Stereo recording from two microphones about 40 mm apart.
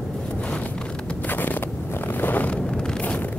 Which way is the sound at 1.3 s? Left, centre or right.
Left.